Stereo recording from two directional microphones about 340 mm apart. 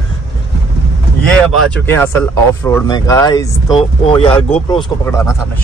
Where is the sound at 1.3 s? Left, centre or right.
Centre.